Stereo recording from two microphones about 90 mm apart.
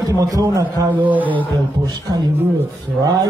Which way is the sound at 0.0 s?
40° right (ahead or behind).